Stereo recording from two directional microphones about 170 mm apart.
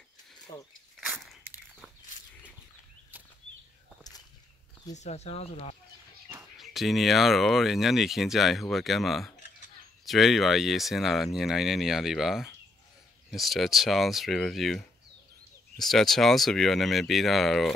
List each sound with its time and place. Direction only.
0.5 s speech: 25° left (ahead or behind)
4.9 s speech: 40° left (ahead or behind)
6.6 s speech: centre (ahead or behind)